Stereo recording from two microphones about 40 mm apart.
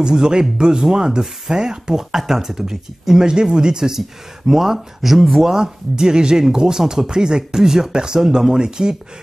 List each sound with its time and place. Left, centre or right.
0.0 s speech: centre
4.5 s speech: centre